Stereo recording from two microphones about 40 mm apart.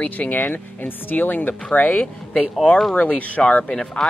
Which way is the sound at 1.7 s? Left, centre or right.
Left.